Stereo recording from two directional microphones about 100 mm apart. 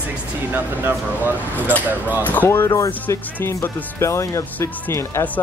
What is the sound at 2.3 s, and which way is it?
Speech, 20° left (ahead or behind).